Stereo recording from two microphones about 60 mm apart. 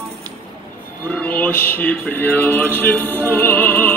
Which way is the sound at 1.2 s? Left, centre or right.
Left.